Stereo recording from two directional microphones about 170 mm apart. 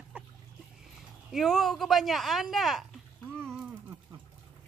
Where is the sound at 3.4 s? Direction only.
20° right (ahead or behind).